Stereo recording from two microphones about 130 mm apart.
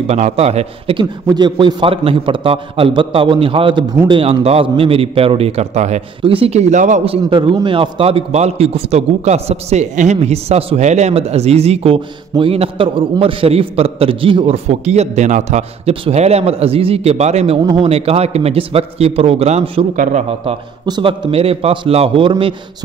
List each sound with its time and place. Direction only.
0.0 s a man's voice: 55° right (ahead or behind)
1.2 s a man's voice: 35° right (ahead or behind); by 6.0 s 60° right (ahead or behind)
6.2 s a man's voice: 45° right (ahead or behind); by 7.0 s 70° right (ahead or behind)
7.1 s a man's voice: 40° right (ahead or behind); by 15.9 s 65° right (ahead or behind)
15.9 s a man's voice: 55° right (ahead or behind)
20.0 s a man's voice: 75° right (ahead or behind)
20.8 s a man's voice: 35° right (ahead or behind)